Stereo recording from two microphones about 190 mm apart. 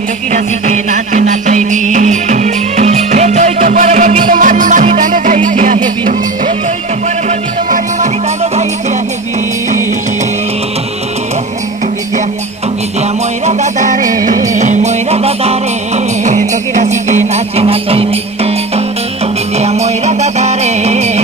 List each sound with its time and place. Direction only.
0.3 s music: 40° right (ahead or behind)
13.5 s music: 40° right (ahead or behind)
19.6 s music: 35° right (ahead or behind)